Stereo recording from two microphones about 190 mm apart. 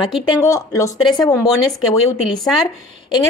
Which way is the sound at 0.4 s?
15° left (ahead or behind).